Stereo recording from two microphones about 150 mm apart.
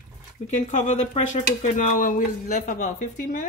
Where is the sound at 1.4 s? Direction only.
65° left (ahead or behind).